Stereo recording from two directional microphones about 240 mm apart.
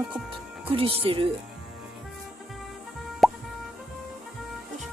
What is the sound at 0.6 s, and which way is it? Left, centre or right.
Speech, right.